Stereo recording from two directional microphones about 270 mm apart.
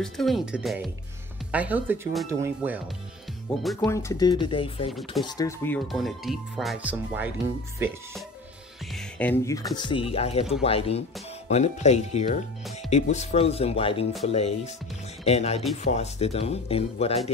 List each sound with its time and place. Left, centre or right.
0.0 s speech: centre
3.5 s speech: centre
8.9 s speech: centre; by 17.2 s left